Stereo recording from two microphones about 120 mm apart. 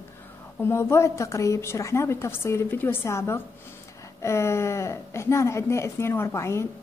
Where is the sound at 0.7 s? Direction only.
20° left (ahead or behind).